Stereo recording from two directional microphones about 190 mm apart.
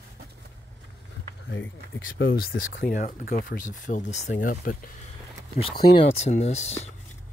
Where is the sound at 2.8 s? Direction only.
45° left (ahead or behind).